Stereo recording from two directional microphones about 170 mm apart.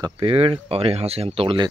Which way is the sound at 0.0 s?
35° right (ahead or behind).